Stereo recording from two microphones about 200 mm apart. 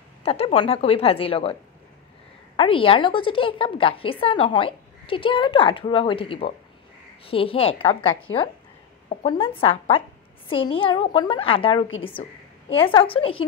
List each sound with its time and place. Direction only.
0.2 s a woman's voice: 30° left (ahead or behind)